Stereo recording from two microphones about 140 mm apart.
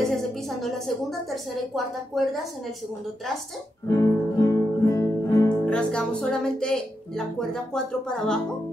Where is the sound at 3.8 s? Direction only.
20° left (ahead or behind).